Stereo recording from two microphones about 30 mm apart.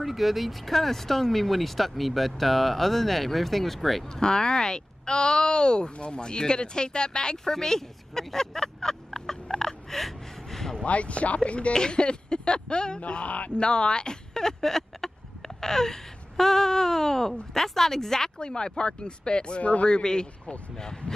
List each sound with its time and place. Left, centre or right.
0.0 s speech: centre
4.1 s speech: left
7.5 s a sound: centre
10.9 s speech: left
11.7 s speech: left
13.0 s speech: left
13.6 s speech: left; by 18.3 s centre
18.4 s speech: left
19.6 s speech: left
19.9 s speech: left